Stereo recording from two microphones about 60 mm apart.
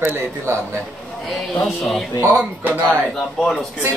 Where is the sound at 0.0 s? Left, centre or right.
Right.